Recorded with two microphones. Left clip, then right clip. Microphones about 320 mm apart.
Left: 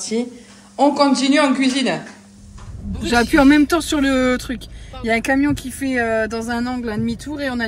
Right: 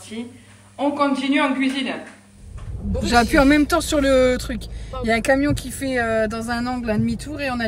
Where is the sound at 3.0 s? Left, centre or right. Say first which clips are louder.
Left 2 dB; centre.